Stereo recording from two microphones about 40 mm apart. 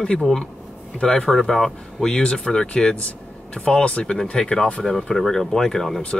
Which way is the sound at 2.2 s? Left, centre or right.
Left.